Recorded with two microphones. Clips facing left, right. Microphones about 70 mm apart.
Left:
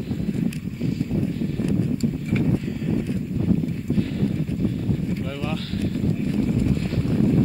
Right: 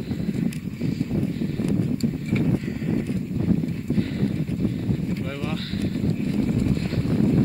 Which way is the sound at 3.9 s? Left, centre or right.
Right.